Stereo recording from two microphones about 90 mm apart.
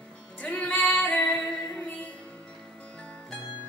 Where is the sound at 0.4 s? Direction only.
15° left (ahead or behind).